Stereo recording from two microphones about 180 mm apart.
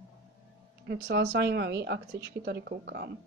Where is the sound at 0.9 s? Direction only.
70° right (ahead or behind).